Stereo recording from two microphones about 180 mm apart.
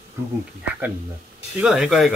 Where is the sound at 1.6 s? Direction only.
5° right (ahead or behind).